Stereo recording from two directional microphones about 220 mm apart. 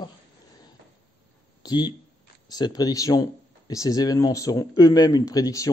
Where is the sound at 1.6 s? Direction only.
20° left (ahead or behind).